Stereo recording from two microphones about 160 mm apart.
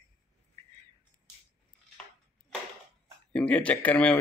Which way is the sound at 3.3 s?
10° left (ahead or behind).